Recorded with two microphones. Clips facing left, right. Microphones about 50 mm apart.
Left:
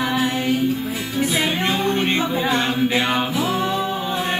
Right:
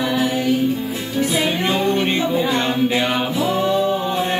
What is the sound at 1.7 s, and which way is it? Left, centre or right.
Music, centre.